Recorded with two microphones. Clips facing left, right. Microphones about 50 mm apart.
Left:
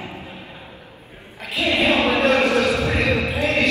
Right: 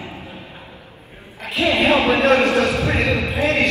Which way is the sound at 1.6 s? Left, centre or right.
Right.